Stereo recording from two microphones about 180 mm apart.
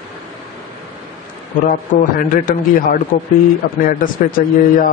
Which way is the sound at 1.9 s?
45° left (ahead or behind).